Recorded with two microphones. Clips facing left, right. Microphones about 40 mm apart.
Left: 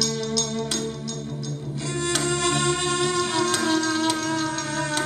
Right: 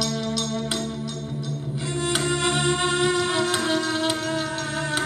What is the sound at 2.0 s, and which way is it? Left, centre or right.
Music, centre.